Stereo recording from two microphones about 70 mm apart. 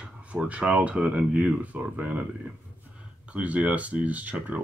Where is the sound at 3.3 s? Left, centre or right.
Centre.